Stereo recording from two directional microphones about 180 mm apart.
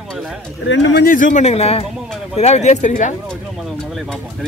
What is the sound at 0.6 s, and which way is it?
Speech, 75° left (ahead or behind).